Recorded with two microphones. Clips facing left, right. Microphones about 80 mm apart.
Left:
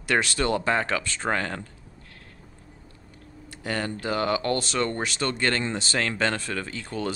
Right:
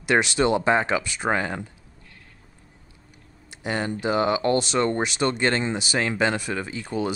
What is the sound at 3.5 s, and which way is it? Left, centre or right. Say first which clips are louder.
Speech: right 2 dB; centre.